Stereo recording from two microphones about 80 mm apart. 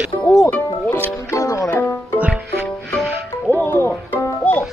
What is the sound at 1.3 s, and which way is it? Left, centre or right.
Music, left.